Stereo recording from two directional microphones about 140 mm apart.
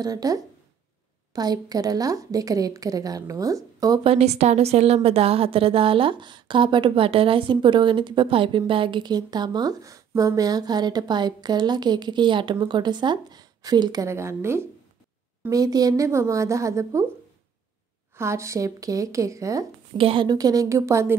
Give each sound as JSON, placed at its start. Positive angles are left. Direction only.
{"t": 0.0, "sound": "a woman's voice", "side_deg": -25}
{"t": 4.0, "sound": "a woman's voice", "side_deg": -45}
{"t": 14.0, "sound": "a woman's voice", "side_deg": -20}
{"t": 18.1, "sound": "a woman's voice", "side_deg": -20}
{"t": 20.0, "sound": "a woman's voice", "side_deg": -40}